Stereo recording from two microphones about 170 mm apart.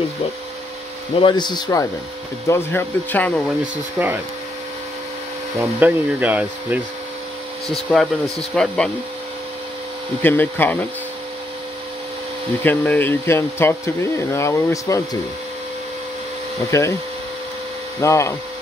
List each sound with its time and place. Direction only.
1.2 s speech: 25° left (ahead or behind); by 3.4 s 10° left (ahead or behind)
4.0 s speech: 10° right (ahead or behind)
5.6 s speech: 10° right (ahead or behind)
7.6 s speech: centre (ahead or behind)
10.2 s speech: 10° left (ahead or behind)
12.6 s speech: 10° left (ahead or behind)
16.7 s speech: 15° left (ahead or behind)
18.0 s speech: 20° left (ahead or behind)